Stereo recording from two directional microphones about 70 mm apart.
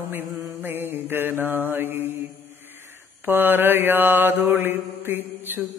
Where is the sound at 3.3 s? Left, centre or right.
Right.